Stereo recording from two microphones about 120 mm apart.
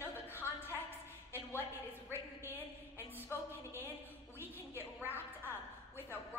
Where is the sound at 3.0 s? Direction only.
20° left (ahead or behind).